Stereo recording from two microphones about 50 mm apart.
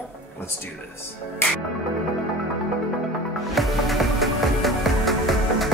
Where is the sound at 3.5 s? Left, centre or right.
Centre.